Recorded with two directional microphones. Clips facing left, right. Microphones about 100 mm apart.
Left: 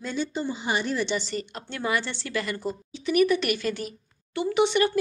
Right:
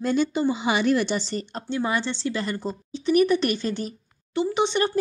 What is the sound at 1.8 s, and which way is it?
A woman's voice, 25° right (ahead or behind).